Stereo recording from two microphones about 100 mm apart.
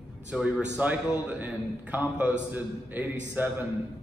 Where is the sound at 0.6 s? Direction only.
10° right (ahead or behind).